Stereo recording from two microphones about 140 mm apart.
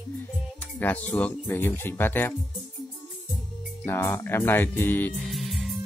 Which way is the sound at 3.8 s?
20° left (ahead or behind).